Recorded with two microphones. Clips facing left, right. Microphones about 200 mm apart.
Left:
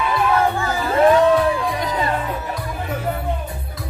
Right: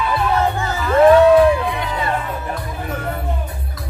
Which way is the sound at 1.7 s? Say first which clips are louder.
Even; 40° left (ahead or behind).